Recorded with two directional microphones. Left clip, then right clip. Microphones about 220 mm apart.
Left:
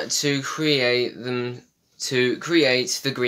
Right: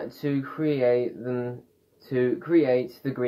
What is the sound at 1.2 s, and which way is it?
Speech, 40° left (ahead or behind).